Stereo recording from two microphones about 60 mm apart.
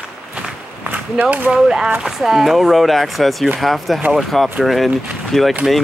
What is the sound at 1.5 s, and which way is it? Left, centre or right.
Speech, centre.